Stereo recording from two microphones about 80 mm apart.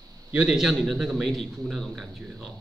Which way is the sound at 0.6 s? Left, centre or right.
Centre.